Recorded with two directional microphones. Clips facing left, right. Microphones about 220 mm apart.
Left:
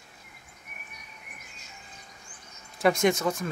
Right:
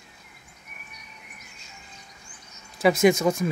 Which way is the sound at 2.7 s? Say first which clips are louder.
Right 4 dB; 5° right (ahead or behind).